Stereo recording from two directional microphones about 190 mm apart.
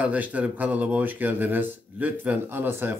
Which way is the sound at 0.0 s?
10° right (ahead or behind).